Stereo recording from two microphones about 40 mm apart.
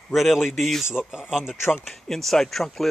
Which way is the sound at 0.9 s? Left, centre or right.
Centre.